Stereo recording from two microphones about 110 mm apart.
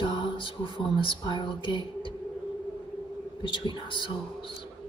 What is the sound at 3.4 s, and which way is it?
Speech, 50° left (ahead or behind).